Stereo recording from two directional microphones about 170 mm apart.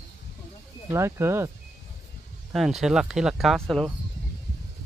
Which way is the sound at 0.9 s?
15° right (ahead or behind).